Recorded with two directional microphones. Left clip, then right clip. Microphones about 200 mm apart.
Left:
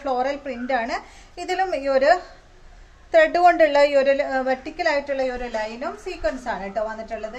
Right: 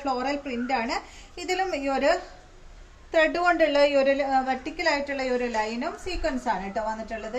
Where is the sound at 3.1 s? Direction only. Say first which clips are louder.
Left 6 dB; 45° left (ahead or behind); by 6.5 s 15° left (ahead or behind).